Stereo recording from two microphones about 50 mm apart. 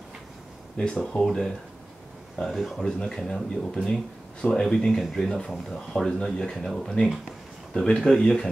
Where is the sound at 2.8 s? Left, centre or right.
Centre.